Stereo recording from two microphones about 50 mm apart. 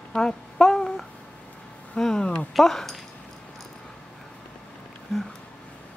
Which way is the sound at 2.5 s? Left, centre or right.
Centre.